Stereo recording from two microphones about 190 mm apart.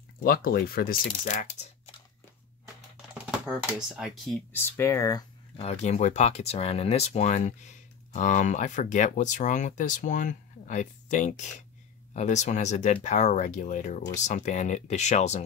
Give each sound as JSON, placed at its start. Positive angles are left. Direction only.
{"t": 0.2, "sound": "speech", "side_deg": 50}
{"t": 3.3, "sound": "speech", "side_deg": -5}
{"t": 5.6, "sound": "speech", "side_deg": 35}